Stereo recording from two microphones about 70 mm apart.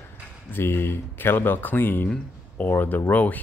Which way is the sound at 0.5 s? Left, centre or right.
Left.